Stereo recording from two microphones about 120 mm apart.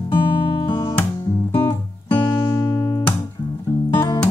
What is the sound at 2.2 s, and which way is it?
Music, 30° left (ahead or behind).